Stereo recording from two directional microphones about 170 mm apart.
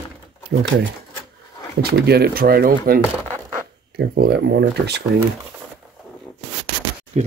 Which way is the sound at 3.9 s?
70° right (ahead or behind).